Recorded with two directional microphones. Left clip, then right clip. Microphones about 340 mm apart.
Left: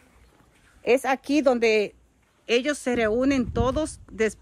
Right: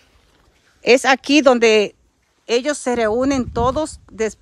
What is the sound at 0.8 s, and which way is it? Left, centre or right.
A woman's voice, right.